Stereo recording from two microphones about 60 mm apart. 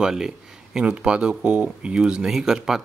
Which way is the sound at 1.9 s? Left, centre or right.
Centre.